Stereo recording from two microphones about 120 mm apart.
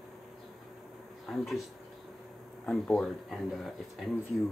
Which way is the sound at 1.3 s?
Centre (ahead or behind).